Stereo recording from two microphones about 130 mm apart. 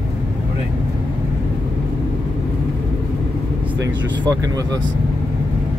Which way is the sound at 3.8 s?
25° right (ahead or behind).